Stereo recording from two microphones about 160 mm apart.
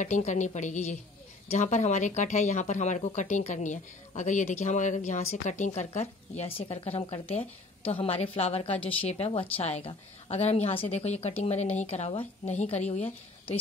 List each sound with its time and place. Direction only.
0.0 s a woman's voice: 50° left (ahead or behind)